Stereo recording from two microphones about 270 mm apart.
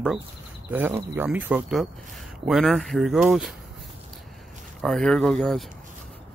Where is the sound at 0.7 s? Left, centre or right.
Centre.